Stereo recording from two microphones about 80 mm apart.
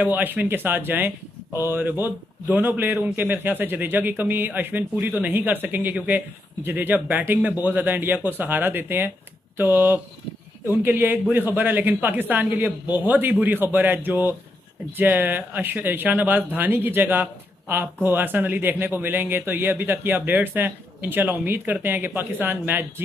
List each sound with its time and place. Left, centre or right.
0.0 s speech: right